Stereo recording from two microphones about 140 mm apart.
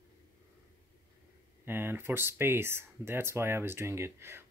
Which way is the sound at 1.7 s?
15° right (ahead or behind).